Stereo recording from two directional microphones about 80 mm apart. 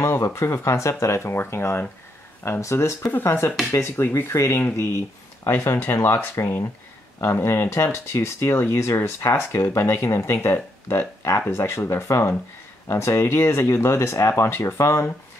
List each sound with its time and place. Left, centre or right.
0.0 s speech: left